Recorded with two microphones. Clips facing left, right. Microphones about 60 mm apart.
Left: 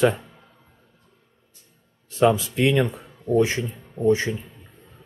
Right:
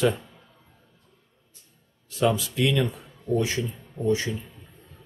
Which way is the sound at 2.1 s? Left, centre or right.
Left.